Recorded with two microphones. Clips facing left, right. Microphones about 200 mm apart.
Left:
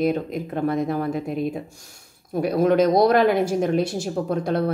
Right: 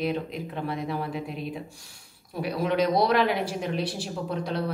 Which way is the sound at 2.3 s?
45° left (ahead or behind).